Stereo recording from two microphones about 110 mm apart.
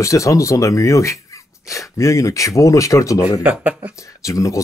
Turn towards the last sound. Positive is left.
turn(degrees=30)  # may be behind; listen again after turning